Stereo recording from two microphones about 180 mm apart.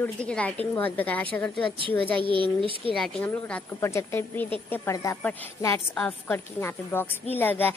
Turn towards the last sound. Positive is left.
turn(degrees=10)  # may be behind; listen again after turning